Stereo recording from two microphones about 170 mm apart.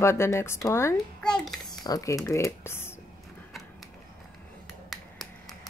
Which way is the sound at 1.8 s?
20° left (ahead or behind).